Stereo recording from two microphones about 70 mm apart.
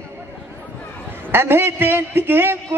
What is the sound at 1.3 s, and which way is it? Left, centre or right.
A woman's voice, right.